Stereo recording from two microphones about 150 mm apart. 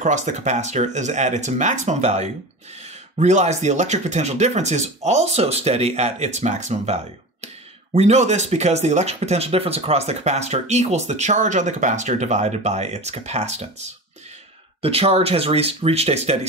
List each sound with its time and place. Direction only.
0.0 s speech: 55° right (ahead or behind)